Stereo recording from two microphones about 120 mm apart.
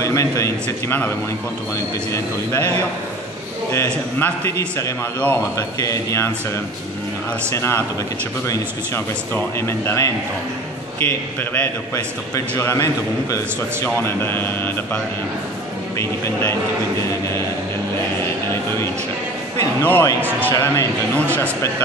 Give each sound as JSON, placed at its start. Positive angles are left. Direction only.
{"t": 0.0, "sound": "a man's voice", "side_deg": 25}
{"t": 2.1, "sound": "a man's voice", "side_deg": 20}
{"t": 3.7, "sound": "a man's voice", "side_deg": 20}
{"t": 7.5, "sound": "a man's voice", "side_deg": 20}
{"t": 19.8, "sound": "a man's voice", "side_deg": 15}